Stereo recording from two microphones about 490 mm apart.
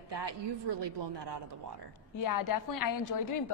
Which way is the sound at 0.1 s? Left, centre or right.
Right.